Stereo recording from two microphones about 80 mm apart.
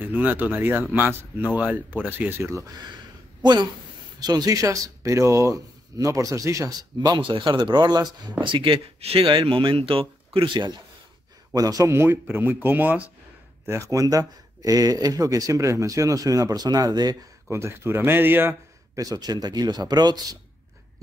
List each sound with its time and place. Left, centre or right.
0.0 s speech: right
4.2 s speech: right
7.2 s speech: right
11.5 s speech: right
11.9 s speech: right
13.7 s speech: right
17.5 s speech: right
18.9 s speech: right